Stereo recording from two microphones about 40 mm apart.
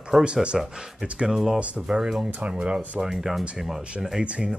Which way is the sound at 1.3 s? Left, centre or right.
Centre.